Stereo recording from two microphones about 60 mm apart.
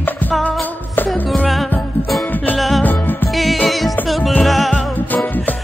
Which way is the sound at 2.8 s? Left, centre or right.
Left.